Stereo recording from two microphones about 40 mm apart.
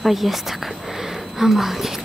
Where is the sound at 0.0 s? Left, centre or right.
Centre.